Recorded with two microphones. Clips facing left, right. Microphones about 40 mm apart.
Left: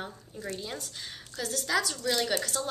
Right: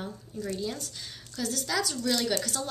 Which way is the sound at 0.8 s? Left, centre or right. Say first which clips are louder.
Even; centre.